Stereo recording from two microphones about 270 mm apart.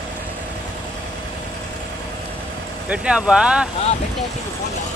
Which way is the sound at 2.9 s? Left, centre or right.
Centre.